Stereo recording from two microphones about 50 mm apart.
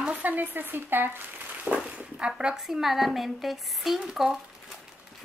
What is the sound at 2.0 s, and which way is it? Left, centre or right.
Speech, right.